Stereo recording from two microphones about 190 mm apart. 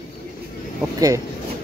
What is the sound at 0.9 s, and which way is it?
Speech, 20° right (ahead or behind).